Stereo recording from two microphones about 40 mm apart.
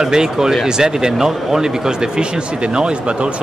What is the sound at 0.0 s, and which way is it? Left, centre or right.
Speech, centre.